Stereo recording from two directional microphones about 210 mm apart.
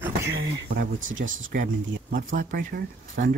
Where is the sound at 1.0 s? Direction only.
65° right (ahead or behind).